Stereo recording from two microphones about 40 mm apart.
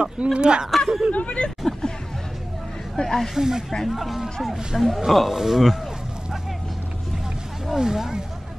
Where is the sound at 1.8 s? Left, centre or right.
Centre.